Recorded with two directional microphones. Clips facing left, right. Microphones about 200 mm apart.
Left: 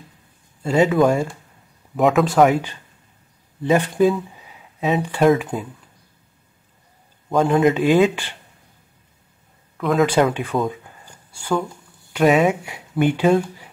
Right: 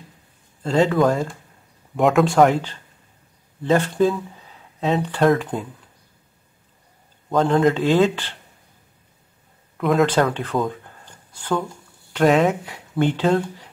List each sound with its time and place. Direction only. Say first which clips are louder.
0.6 s speech: left 2 dB; 10° left (ahead or behind)
7.5 s speech: left 2 dB; 10° left (ahead or behind)
9.8 s speech: even; centre (ahead or behind)
10.0 s speech: left 2 dB; 10° left (ahead or behind)
10.6 s a sound: left 1 dB; 10° left (ahead or behind)
13.0 s speech: left 2 dB; 10° left (ahead or behind)